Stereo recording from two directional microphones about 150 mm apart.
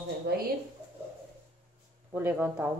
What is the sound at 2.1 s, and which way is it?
Speech, 15° right (ahead or behind).